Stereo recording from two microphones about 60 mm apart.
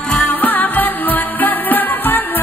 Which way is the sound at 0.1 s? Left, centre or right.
Left.